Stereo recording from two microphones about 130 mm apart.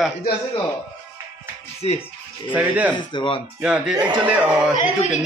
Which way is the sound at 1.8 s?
50° left (ahead or behind).